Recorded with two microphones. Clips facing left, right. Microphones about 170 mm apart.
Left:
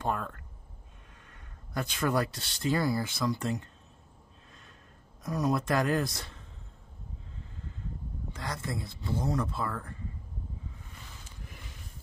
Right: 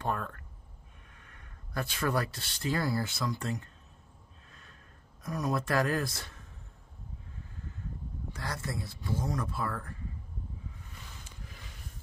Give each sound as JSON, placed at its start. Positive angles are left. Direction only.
{"t": 1.7, "sound": "speech", "side_deg": 20}
{"t": 5.2, "sound": "speech", "side_deg": 20}
{"t": 8.4, "sound": "speech", "side_deg": 20}